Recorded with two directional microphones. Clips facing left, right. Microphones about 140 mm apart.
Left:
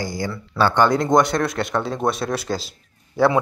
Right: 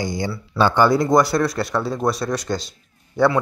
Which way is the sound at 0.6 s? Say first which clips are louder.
Right 1 dB; 10° right (ahead or behind).